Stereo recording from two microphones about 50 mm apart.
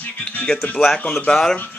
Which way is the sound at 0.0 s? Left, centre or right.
Left.